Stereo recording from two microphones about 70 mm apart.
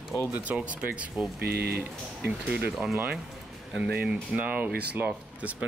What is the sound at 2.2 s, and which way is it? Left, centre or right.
Speech, centre.